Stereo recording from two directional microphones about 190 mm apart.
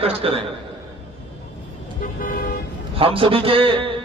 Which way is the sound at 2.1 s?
50° left (ahead or behind).